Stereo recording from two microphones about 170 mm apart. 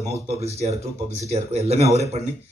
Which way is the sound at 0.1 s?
40° right (ahead or behind).